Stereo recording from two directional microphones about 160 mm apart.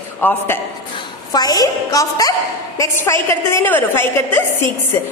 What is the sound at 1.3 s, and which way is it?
A woman's voice, 25° left (ahead or behind).